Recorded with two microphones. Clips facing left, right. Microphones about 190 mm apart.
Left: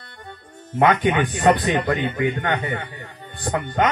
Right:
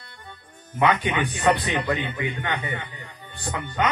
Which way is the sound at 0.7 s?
50° left (ahead or behind).